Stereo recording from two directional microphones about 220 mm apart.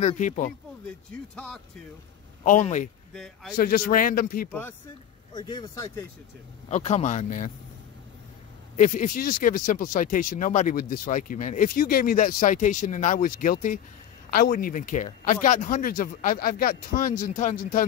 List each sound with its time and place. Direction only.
0.0 s speech: 35° left (ahead or behind)
1.3 s a man's voice: 5° left (ahead or behind)
2.4 s speech: 35° left (ahead or behind)
3.1 s a man's voice: centre (ahead or behind)
3.5 s speech: 40° left (ahead or behind)
4.5 s speech: 10° left (ahead or behind)
6.7 s speech: 30° left (ahead or behind)
8.7 s speech: 35° left (ahead or behind)